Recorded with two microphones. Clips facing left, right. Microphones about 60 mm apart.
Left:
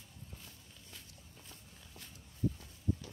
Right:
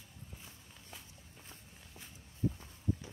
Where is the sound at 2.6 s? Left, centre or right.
Right.